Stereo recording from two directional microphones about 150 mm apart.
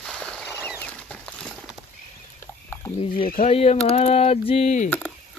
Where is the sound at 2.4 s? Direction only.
15° left (ahead or behind).